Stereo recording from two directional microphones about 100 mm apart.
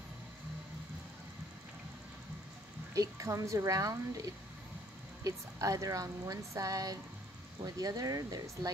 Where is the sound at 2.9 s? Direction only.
30° right (ahead or behind).